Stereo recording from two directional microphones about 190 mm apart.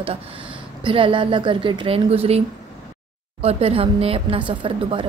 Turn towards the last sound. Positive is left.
turn(degrees=-25)  # may be behind; listen again after turning